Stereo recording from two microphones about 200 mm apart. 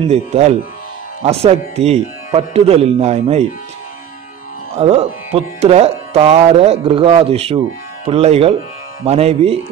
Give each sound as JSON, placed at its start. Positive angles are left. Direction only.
{"t": 0.1, "sound": "music", "side_deg": -35}
{"t": 4.7, "sound": "music", "side_deg": -30}